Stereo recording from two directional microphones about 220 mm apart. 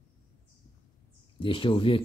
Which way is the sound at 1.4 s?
25° left (ahead or behind).